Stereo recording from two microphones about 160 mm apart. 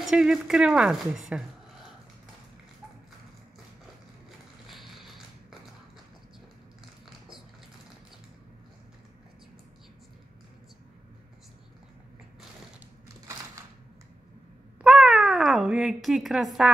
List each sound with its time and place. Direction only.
0.0 s speech: 5° right (ahead or behind)
4.6 s a sound: centre (ahead or behind)
14.8 s cat: centre (ahead or behind)